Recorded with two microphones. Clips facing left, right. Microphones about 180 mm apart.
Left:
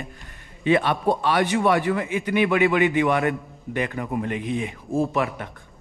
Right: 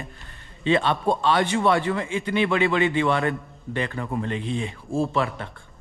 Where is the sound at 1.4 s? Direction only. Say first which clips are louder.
Left 1 dB; 25° right (ahead or behind).